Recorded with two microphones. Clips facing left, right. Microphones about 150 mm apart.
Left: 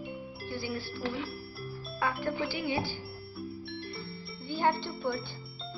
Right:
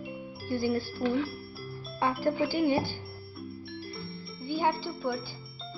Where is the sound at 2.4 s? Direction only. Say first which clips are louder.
Right 6 dB; 45° right (ahead or behind).